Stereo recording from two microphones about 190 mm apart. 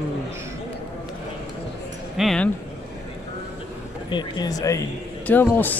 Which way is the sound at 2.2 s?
Centre (ahead or behind).